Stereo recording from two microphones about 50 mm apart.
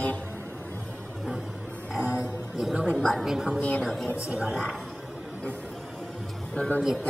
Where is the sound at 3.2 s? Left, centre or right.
Centre.